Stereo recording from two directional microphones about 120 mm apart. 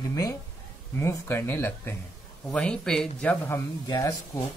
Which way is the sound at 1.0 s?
20° left (ahead or behind).